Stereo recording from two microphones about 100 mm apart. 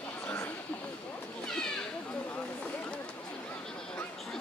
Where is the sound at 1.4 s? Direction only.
5° left (ahead or behind).